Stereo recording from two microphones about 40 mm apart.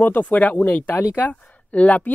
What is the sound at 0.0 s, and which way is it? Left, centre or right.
Speech, left.